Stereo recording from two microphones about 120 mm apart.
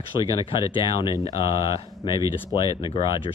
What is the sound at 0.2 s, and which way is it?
Speech, 45° left (ahead or behind).